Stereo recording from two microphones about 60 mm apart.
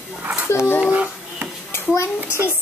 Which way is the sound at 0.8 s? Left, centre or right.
Right.